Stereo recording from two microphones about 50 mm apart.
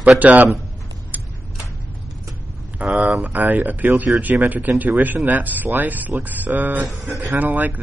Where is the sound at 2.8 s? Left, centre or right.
Right.